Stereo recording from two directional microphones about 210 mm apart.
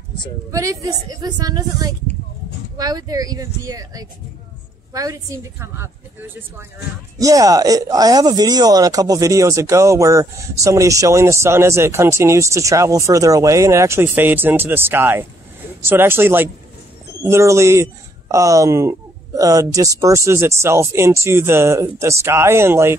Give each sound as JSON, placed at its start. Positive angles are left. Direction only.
{"t": 0.5, "sound": "speech", "side_deg": -15}